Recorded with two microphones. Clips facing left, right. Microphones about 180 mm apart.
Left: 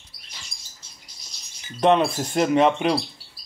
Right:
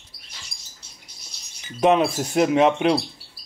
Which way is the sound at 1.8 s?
5° right (ahead or behind).